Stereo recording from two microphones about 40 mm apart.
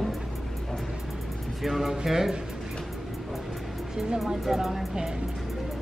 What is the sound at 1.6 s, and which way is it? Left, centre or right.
Speech, centre.